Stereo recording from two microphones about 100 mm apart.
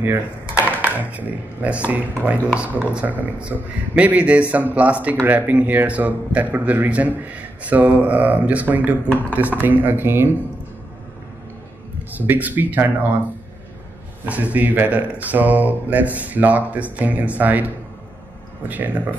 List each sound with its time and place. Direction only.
0.7 s a man's voice: 15° right (ahead or behind)
12.2 s speech: 15° right (ahead or behind)
14.2 s a man's voice: 15° right (ahead or behind)
18.7 s a man's voice: 15° right (ahead or behind)